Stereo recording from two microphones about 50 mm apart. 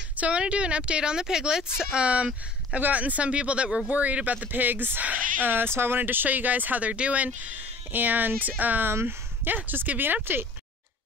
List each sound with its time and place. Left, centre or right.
0.2 s a woman's voice: right
2.8 s a woman's voice: right
3.9 s speech: right